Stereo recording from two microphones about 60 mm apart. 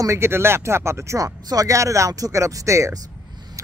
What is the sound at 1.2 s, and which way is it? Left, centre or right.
Speech, right.